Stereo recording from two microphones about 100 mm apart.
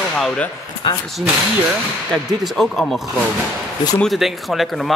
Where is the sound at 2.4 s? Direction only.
Centre (ahead or behind).